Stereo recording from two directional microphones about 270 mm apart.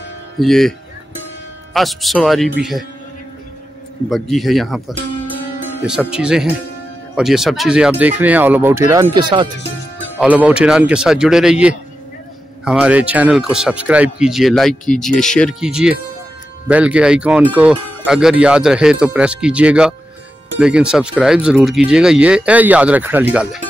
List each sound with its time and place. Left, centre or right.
0.4 s speech: centre
4.1 s speech: centre
10.1 s speech: centre
12.6 s speech: centre